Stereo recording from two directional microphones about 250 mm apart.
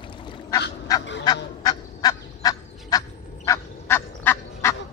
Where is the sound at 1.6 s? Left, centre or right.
Centre.